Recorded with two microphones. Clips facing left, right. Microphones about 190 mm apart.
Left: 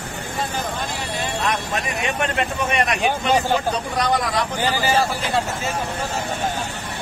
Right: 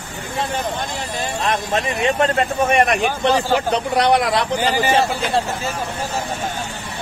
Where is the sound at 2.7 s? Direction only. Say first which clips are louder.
Right 6 dB; 50° right (ahead or behind).